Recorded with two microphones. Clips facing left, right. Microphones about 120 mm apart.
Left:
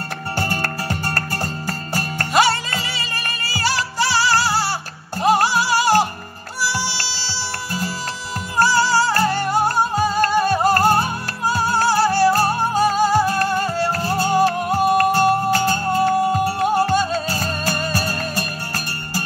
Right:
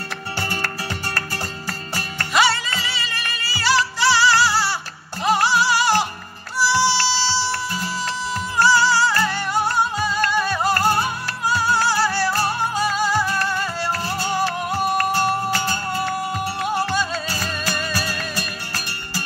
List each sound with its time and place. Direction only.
0.4 s music: 45° left (ahead or behind)
5.2 s music of latin america: 45° left (ahead or behind)
6.7 s music: 50° left (ahead or behind)